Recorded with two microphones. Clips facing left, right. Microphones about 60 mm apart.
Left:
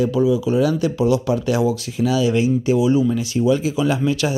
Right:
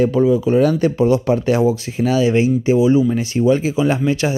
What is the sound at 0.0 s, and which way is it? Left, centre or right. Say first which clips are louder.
Speech: right 3 dB; right.